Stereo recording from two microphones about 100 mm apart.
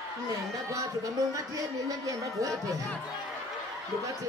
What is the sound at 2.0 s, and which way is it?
Speech, 35° right (ahead or behind).